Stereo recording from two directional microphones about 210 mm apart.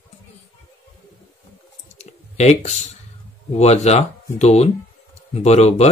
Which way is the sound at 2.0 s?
30° left (ahead or behind).